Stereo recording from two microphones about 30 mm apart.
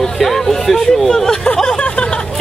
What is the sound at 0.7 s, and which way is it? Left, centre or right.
Speech, centre.